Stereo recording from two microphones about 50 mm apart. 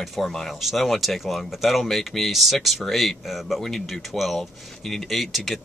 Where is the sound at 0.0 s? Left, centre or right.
Centre.